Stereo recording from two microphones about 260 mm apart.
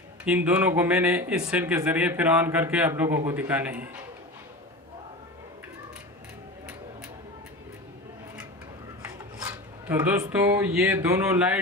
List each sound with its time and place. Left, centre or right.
0.2 s speech: centre
9.0 s filing: centre